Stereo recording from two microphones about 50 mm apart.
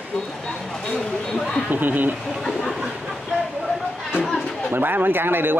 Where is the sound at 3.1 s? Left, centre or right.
Centre.